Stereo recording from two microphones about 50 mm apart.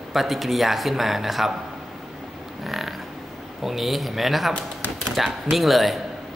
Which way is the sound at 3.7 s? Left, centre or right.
Centre.